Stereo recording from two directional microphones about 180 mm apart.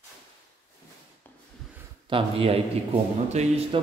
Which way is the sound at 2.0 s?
30° right (ahead or behind).